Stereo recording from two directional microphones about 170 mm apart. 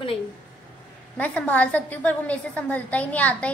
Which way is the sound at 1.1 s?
10° left (ahead or behind).